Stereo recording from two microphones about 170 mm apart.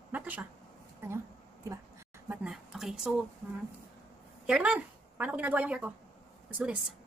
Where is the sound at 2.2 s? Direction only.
5° right (ahead or behind).